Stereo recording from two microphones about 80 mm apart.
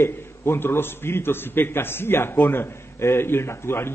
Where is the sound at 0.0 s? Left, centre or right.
Left.